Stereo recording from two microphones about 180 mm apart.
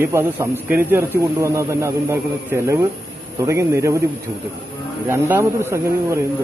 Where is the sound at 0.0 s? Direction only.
15° right (ahead or behind).